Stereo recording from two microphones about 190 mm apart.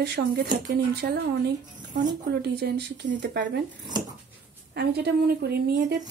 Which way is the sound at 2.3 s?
60° right (ahead or behind).